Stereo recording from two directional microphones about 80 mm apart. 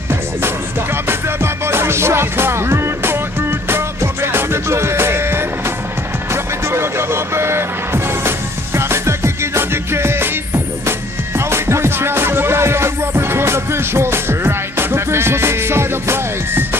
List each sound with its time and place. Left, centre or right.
1.0 s music: right